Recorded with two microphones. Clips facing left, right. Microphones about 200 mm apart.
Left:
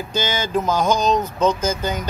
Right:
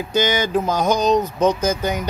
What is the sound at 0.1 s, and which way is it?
Speech, 15° right (ahead or behind).